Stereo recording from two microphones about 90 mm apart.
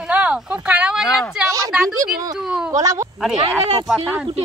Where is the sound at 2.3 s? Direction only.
5° right (ahead or behind).